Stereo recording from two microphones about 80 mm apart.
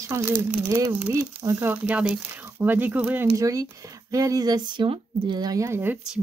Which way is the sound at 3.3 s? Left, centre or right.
Right.